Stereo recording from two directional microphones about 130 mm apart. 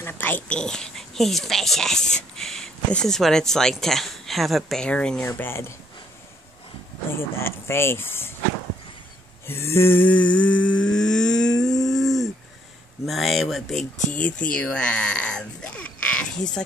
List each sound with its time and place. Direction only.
0.0 s speech: 15° left (ahead or behind)
7.1 s speech: 20° left (ahead or behind)
9.5 s humming: 20° left (ahead or behind)
11.8 s a sound: centre (ahead or behind)
13.0 s speech: centre (ahead or behind)